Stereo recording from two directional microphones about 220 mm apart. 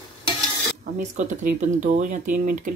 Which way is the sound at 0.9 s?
35° right (ahead or behind).